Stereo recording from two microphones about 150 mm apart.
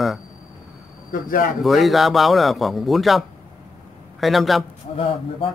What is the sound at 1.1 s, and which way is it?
Speech, 65° left (ahead or behind).